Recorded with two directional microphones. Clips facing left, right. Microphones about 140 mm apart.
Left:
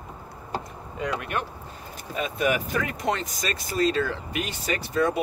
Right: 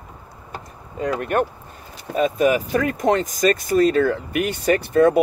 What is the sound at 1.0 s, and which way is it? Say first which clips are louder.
Speech: right 8 dB; 40° right (ahead or behind).